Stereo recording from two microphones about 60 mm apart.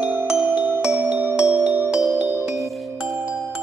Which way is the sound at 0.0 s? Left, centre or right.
Right.